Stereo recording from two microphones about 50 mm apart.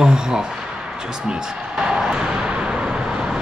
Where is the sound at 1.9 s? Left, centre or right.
Centre.